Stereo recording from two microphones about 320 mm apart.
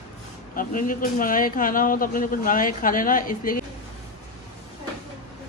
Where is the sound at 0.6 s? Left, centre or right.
Left.